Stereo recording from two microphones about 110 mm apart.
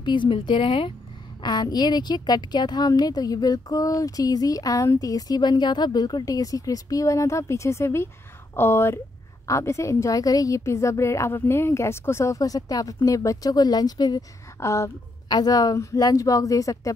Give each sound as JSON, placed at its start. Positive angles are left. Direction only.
{"t": 0.0, "sound": "speech", "side_deg": 45}
{"t": 1.4, "sound": "a woman's voice", "side_deg": 40}